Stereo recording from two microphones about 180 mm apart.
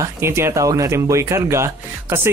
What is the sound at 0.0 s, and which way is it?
Speech, 15° right (ahead or behind).